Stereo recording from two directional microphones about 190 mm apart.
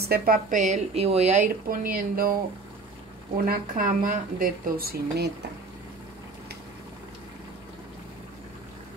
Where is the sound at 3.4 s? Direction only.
45° right (ahead or behind).